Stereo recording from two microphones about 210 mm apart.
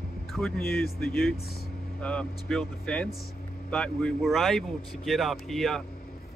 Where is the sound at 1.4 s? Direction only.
45° left (ahead or behind).